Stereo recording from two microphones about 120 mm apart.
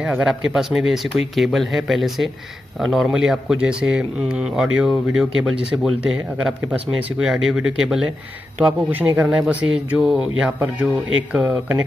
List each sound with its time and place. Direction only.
0.2 s speech: 5° right (ahead or behind)